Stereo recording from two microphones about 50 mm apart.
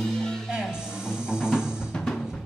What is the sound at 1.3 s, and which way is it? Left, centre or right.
Music, centre.